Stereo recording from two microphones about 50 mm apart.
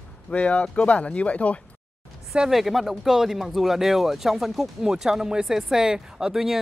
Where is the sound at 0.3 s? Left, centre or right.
Left.